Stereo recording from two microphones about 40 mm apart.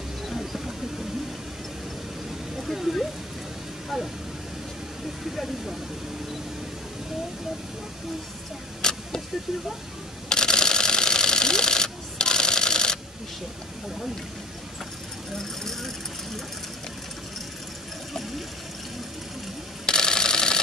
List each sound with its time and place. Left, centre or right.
0.3 s bird: centre
2.5 s a sound: centre
3.9 s speech: centre
5.2 s speech: centre
8.8 s a sound: centre
9.5 s speech: centre
10.3 s camera: centre
15.3 s speech: centre
19.9 s camera: centre